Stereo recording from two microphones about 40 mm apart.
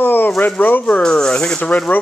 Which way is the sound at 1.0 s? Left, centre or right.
Left.